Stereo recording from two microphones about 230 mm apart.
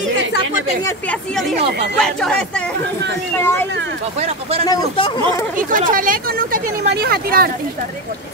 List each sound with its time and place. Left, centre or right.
2.0 s speech: centre
4.2 s speech: right
4.6 s speech: left
5.6 s speech: right